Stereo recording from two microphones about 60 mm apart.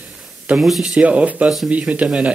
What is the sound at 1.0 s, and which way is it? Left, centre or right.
A man's voice, right.